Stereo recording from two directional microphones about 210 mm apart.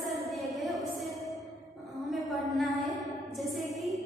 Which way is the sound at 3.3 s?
Centre (ahead or behind).